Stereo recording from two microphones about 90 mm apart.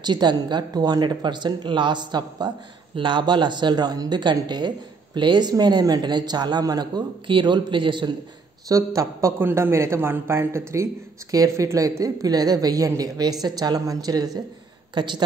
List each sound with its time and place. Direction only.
0.0 s a woman's voice: 55° right (ahead or behind)
8.6 s a man's voice: 35° right (ahead or behind)
15.0 s a woman's voice: 60° right (ahead or behind)